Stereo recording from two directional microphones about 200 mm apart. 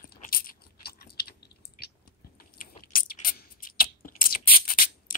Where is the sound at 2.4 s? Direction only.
45° left (ahead or behind).